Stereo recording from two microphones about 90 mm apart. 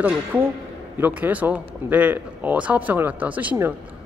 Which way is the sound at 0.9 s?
20° right (ahead or behind).